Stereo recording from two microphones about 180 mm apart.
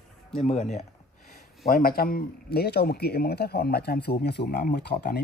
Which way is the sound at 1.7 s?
55° left (ahead or behind).